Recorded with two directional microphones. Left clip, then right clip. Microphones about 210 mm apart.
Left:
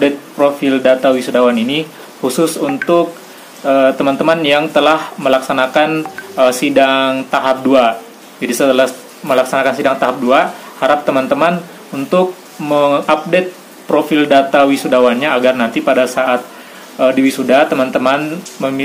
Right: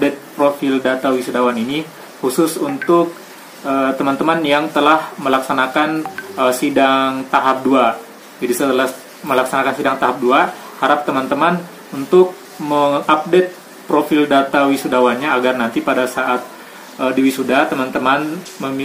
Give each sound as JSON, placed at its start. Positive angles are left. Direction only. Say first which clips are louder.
{"t": 0.0, "sound": "speech", "louder": "left 3 dB", "side_deg": 10}
{"t": 12.6, "sound": "speech", "louder": "left 3 dB", "side_deg": 10}